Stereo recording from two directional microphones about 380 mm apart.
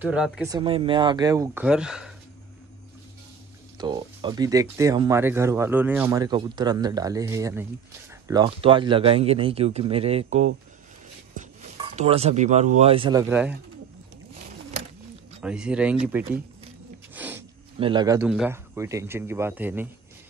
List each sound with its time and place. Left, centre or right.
0.0 s speech: centre
0.5 s speech: centre
3.7 s speech: centre
15.4 s speech: centre